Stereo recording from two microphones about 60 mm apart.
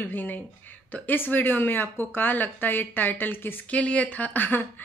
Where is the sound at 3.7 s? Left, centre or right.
Left.